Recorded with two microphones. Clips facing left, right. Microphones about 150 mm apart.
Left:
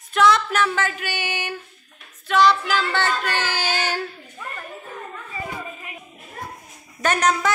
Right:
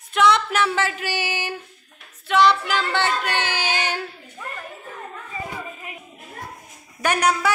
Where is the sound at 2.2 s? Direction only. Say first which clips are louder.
Even; 20° right (ahead or behind).